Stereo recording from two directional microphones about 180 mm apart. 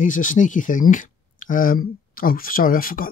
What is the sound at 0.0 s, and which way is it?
Speech, 45° left (ahead or behind).